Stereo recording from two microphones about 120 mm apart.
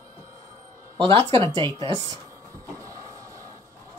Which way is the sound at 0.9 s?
45° right (ahead or behind).